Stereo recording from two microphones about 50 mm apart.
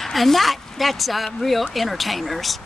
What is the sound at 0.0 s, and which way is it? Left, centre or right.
Speech, centre.